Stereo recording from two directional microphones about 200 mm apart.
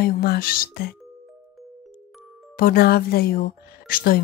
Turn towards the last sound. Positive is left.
turn(degrees=45)  # may be behind; listen again after turning